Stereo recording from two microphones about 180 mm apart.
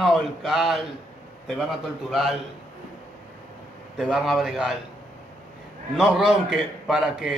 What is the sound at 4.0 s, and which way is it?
Speech, centre (ahead or behind).